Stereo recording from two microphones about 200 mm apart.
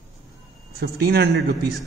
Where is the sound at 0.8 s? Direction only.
55° right (ahead or behind).